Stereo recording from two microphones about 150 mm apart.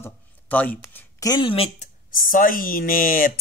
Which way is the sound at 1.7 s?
65° left (ahead or behind).